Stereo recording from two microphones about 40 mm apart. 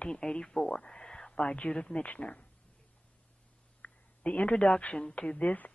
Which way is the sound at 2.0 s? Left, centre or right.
Left.